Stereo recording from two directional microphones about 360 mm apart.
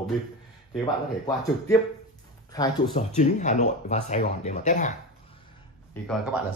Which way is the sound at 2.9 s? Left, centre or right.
Centre.